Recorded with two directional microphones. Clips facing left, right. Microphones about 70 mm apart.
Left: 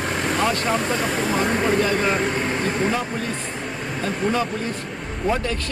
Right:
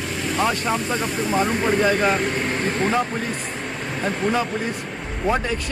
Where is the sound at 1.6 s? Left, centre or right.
Centre.